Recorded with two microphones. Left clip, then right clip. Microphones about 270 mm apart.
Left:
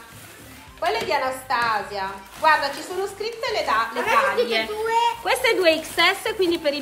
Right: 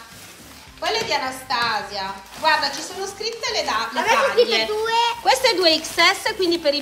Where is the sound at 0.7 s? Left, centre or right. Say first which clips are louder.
Even; centre.